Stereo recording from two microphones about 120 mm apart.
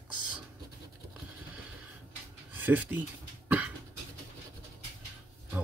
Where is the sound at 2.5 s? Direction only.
15° right (ahead or behind).